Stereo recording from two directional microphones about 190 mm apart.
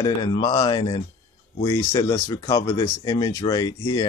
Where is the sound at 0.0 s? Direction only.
25° left (ahead or behind).